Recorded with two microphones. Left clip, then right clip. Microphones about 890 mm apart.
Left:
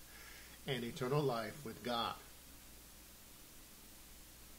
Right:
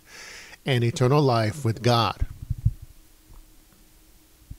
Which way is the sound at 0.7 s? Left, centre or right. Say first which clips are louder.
Right 17 dB; right.